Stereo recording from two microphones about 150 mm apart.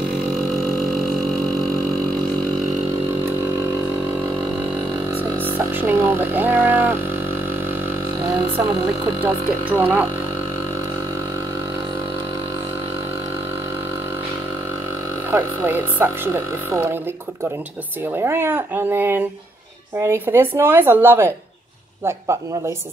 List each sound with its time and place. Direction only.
5.6 s a sound: 15° right (ahead or behind)
9.2 s speech: 10° right (ahead or behind)
15.3 s speech: 15° right (ahead or behind)
18.1 s speech: 15° right (ahead or behind)